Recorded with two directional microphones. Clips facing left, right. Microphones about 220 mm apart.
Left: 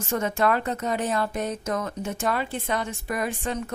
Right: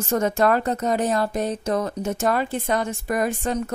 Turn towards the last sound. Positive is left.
turn(degrees=-40)  # may be behind; listen again after turning